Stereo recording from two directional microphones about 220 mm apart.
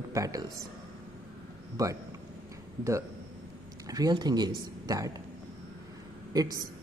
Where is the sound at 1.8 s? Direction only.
15° right (ahead or behind).